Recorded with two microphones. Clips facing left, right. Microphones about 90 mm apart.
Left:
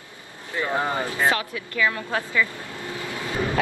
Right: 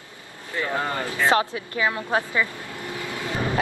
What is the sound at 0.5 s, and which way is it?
Speech, 15° left (ahead or behind).